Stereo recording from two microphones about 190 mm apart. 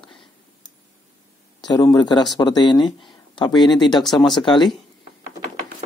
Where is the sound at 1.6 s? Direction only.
20° left (ahead or behind).